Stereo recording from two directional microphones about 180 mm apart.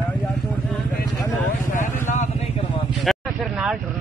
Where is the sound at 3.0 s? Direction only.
5° right (ahead or behind).